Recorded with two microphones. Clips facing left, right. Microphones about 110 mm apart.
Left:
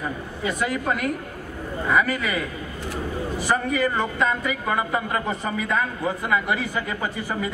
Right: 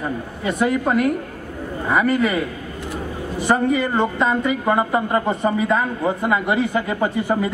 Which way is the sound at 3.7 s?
30° right (ahead or behind).